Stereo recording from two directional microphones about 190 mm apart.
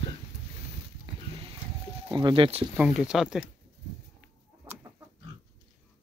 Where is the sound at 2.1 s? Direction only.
25° right (ahead or behind).